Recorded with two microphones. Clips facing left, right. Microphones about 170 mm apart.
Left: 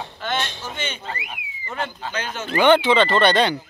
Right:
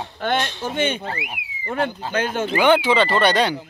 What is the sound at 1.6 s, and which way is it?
Speech, 55° right (ahead or behind).